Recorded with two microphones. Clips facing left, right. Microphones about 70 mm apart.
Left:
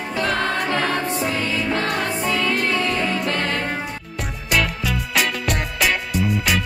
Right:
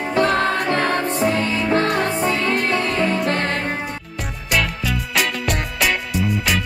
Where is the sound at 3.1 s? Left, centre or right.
Right.